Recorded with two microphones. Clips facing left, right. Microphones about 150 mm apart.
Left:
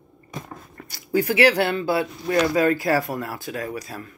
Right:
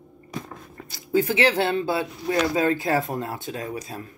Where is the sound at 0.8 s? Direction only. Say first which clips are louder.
Even; 20° right (ahead or behind).